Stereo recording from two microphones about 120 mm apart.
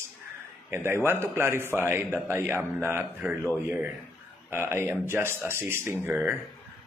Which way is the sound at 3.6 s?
15° right (ahead or behind).